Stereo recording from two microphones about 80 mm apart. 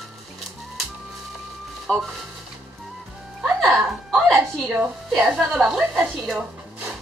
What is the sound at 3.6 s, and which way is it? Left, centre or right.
Music, centre.